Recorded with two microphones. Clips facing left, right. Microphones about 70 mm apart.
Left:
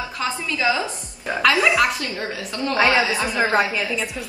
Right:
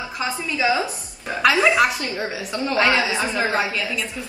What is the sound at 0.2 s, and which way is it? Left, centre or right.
Speech, centre.